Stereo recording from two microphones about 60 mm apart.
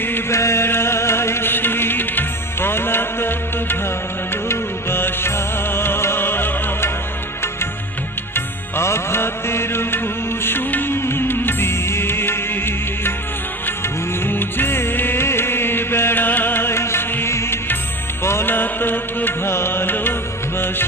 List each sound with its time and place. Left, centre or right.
0.3 s chant: left
4.5 s music: left
8.7 s music: left
14.2 s music: left